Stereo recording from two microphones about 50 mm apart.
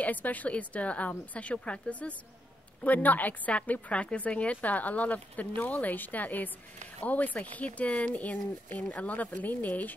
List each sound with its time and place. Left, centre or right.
0.0 s a woman's voice: left